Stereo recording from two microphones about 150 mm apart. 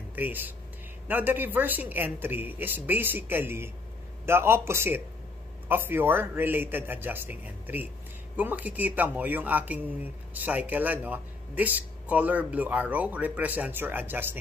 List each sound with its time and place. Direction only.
0.1 s speech: 10° right (ahead or behind)